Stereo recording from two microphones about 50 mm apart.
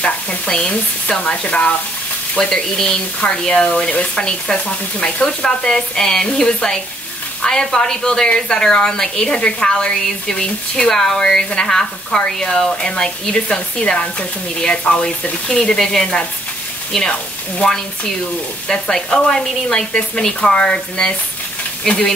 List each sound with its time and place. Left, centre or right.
0.0 s frying: centre
2.3 s a woman's voice: centre
3.9 s a woman's voice: left
15.4 s a woman's voice: centre
18.7 s a woman's voice: centre